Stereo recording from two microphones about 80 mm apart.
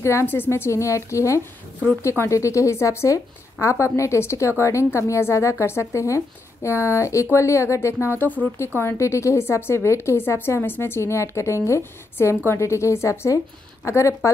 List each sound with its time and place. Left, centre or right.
0.0 s speech: left
8.2 s speech: left
8.7 s speech: left